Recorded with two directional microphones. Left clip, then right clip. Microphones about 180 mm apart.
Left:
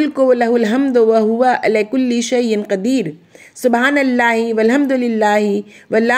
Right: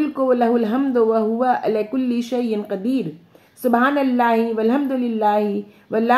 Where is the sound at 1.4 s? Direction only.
80° left.